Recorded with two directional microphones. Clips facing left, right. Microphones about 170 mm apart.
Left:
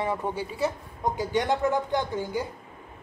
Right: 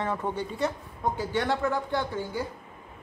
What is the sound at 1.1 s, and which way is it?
A woman's voice, 15° left (ahead or behind).